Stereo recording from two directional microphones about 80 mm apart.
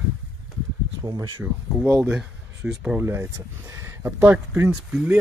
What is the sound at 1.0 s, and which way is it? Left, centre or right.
Speech, right.